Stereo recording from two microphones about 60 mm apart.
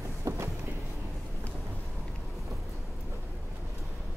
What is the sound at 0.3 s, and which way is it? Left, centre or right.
Vehicle, right.